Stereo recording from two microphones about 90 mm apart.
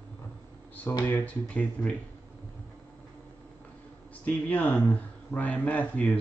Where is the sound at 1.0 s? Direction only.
15° left (ahead or behind).